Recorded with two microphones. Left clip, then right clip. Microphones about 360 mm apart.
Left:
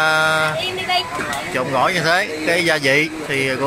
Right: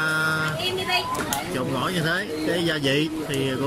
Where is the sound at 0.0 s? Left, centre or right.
Centre.